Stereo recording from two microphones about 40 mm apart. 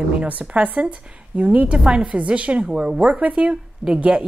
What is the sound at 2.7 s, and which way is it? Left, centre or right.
Speech, centre.